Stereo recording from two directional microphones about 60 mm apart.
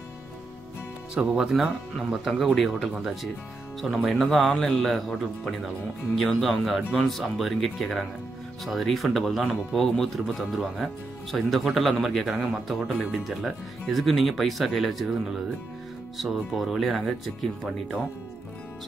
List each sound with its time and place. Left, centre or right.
1.1 s speech: right
1.4 s speech: centre
6.1 s speech: centre